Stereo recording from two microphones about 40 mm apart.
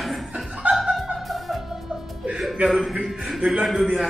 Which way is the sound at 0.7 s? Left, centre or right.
Right.